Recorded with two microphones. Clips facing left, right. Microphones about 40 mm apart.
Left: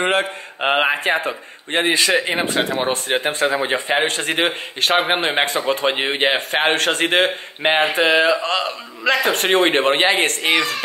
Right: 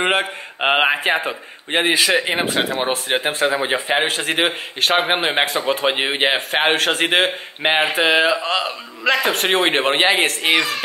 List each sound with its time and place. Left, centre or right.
0.0 s mantra: centre
0.8 s speech: centre
2.0 s speech: centre